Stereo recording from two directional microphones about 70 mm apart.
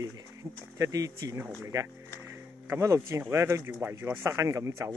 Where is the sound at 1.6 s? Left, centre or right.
Right.